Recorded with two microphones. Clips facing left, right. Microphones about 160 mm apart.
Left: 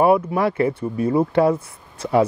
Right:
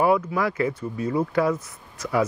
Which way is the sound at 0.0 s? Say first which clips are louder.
Left 4 dB; 25° left (ahead or behind).